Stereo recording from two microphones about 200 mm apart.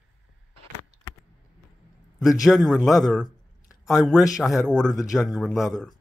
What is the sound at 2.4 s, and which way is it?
A man's voice, centre (ahead or behind).